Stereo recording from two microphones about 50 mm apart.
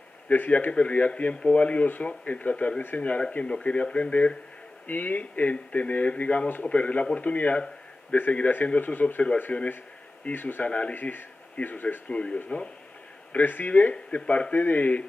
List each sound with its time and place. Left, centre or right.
0.3 s speech: left
9.5 s speech: left
10.3 s speech: left
10.7 s speech: left
11.0 s speech: left
13.4 s speech: left
14.2 s speech: centre
14.5 s speech: left